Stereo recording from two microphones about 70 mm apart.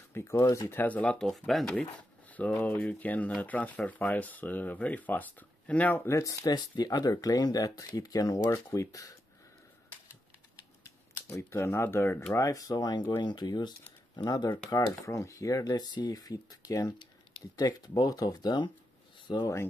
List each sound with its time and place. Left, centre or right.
0.1 s speech: left
0.7 s speech: left
1.1 s speech: centre
2.3 s speech: left
6.0 s speech: left
11.2 s speech: left
12.4 s speech: left
13.2 s speech: left
14.1 s speech: left
15.0 s speech: left